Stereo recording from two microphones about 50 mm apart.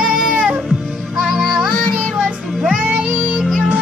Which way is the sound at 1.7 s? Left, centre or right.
Centre.